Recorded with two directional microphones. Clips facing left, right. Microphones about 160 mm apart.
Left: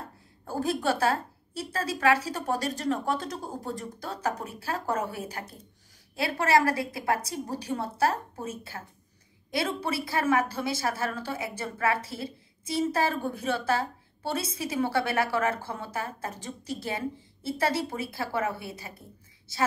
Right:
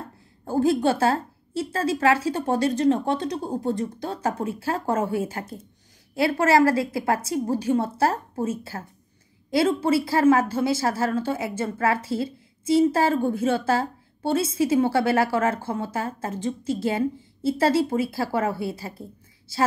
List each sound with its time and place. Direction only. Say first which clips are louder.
0.5 s a woman's voice: right 7 dB; 25° right (ahead or behind)